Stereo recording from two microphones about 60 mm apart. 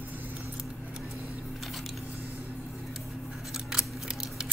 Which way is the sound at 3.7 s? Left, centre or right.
Centre.